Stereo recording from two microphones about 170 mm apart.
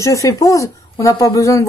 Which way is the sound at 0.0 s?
20° left (ahead or behind).